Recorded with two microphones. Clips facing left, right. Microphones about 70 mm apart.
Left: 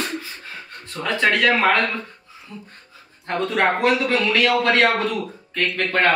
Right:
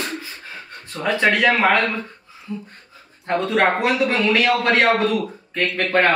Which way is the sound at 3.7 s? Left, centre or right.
Centre.